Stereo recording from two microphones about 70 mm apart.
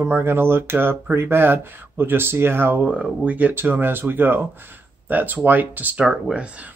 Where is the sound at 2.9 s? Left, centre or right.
Right.